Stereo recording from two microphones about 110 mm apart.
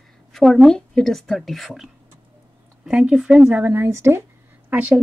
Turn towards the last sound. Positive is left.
turn(degrees=-15)  # may be behind; listen again after turning